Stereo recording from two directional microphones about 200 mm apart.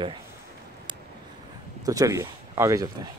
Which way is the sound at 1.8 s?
15° right (ahead or behind).